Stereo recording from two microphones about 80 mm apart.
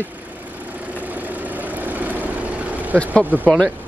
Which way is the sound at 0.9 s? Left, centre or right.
Right.